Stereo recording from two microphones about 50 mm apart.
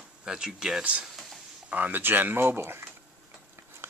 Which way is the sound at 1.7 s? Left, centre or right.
Right.